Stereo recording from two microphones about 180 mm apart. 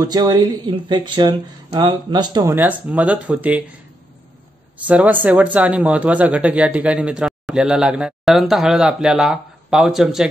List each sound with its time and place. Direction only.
0.0 s speech: 20° right (ahead or behind)
4.7 s speech: 10° right (ahead or behind)